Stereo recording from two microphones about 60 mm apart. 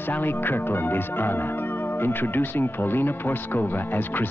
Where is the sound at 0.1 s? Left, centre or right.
Left.